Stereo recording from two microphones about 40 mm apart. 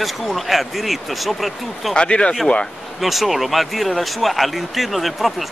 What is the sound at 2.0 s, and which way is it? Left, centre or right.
Speech, left.